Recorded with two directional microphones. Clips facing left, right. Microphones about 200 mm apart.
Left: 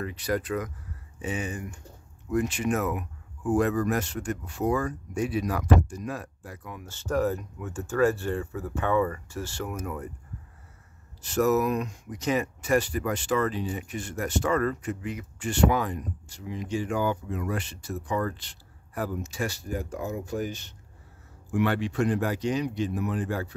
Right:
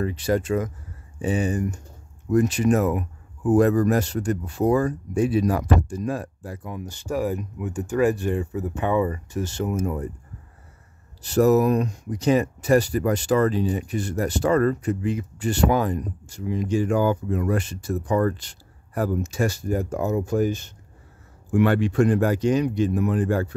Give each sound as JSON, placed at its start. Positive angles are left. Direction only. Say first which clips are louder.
{"t": 0.0, "sound": "speech", "louder": "right 6 dB", "side_deg": -30}
{"t": 6.9, "sound": "speech", "louder": "even", "side_deg": -10}
{"t": 11.2, "sound": "speech", "louder": "right 6 dB", "side_deg": -35}